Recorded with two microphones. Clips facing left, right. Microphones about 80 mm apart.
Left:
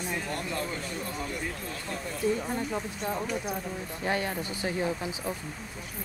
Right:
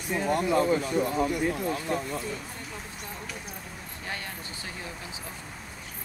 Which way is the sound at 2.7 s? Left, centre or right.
Left.